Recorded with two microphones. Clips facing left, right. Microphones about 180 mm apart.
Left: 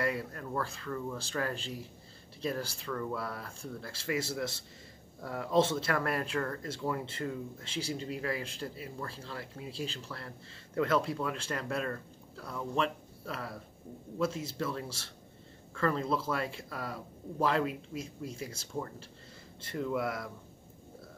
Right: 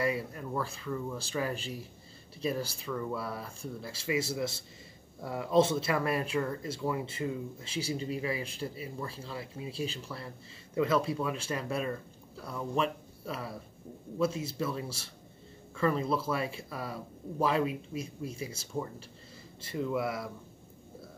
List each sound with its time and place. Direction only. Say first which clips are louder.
0.0 s speech: right 2 dB; 10° right (ahead or behind)